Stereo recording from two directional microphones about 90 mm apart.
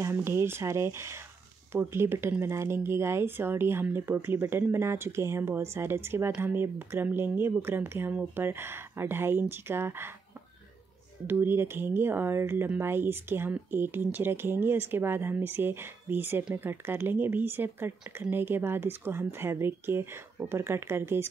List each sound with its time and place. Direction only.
0.0 s speech: 30° right (ahead or behind)
11.2 s speech: 25° right (ahead or behind)